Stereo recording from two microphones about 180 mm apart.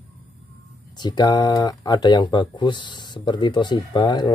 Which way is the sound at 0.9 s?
25° left (ahead or behind).